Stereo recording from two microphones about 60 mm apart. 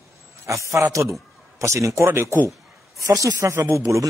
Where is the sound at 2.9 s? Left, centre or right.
Right.